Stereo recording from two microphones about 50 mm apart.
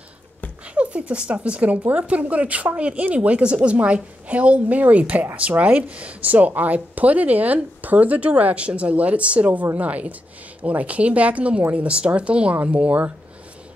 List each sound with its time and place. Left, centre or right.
0.7 s speech: right